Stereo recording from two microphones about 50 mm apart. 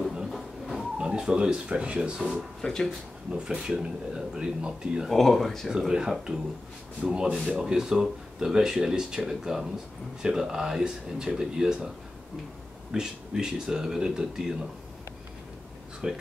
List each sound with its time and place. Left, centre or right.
0.0 s a sound: centre
0.3 s a sound: centre
0.9 s speech: centre
2.6 s speech: centre
3.3 s speech: centre
5.1 s speech: centre
5.7 s speech: centre
12.9 s speech: centre
16.0 s speech: centre